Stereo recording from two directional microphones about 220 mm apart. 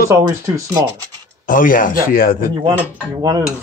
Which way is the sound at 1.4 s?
40° left (ahead or behind).